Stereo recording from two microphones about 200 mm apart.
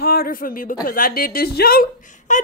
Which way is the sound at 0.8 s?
45° left (ahead or behind).